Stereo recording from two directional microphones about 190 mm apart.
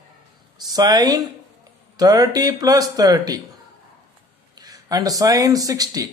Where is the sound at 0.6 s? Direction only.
20° right (ahead or behind).